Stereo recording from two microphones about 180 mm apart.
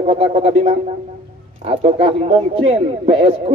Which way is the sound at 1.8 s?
35° right (ahead or behind).